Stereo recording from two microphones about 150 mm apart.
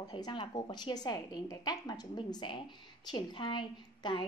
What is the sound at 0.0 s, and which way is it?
A woman's voice, 30° left (ahead or behind).